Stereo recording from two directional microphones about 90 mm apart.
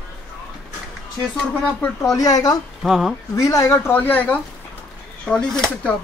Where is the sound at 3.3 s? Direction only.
35° left (ahead or behind); by 4.4 s 20° left (ahead or behind).